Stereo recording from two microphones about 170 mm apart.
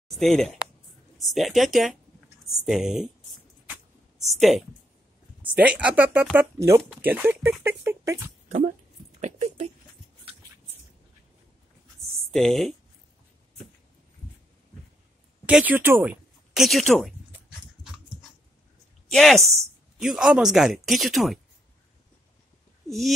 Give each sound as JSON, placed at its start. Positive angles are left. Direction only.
{"t": 0.1, "sound": "speech", "side_deg": 0}
{"t": 4.2, "sound": "speech", "side_deg": 0}
{"t": 9.2, "sound": "a sound", "side_deg": -40}
{"t": 12.3, "sound": "speech", "side_deg": 0}
{"t": 15.4, "sound": "speech", "side_deg": -10}
{"t": 17.3, "sound": "dog", "side_deg": -5}
{"t": 19.0, "sound": "a woman's voice", "side_deg": 0}
{"t": 22.8, "sound": "speech", "side_deg": 0}